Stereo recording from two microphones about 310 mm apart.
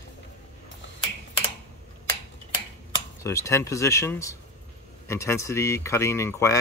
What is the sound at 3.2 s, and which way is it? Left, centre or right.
Speech, centre.